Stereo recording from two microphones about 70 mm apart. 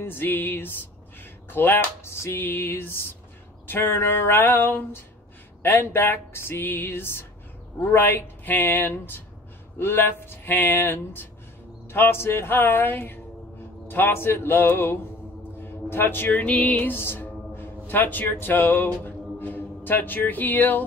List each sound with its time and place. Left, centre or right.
0.0 s speech: left
1.5 s a sound: left
7.9 s speech: left
9.8 s a sound: left
15.6 s music: left
18.3 s speech: left
19.0 s music: left